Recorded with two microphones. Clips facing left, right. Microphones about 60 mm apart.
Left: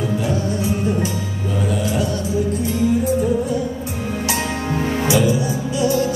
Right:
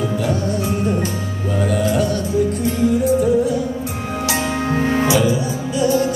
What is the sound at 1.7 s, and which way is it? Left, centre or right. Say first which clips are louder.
Music: right 4 dB; right.